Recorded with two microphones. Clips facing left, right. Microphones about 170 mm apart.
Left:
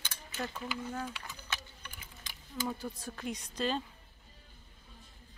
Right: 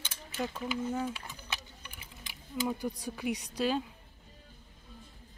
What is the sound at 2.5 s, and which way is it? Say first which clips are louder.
Speech: right 4 dB; 10° right (ahead or behind).